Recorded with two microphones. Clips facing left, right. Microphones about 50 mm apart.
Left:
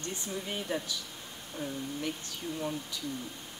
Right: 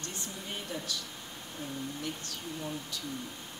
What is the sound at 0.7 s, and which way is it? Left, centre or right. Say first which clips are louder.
Speech: left 6 dB; left.